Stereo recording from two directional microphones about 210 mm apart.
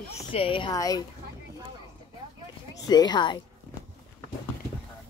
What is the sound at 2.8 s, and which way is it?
Speech, 20° left (ahead or behind).